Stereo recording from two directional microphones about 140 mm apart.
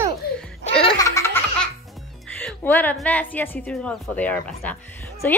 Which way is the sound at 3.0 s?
10° left (ahead or behind).